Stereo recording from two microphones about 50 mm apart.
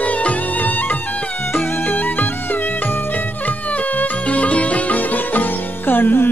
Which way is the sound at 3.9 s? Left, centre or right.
Left.